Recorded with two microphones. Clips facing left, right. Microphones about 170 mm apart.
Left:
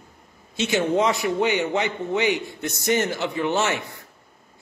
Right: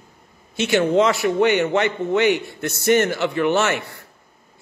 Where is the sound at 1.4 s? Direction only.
65° right (ahead or behind).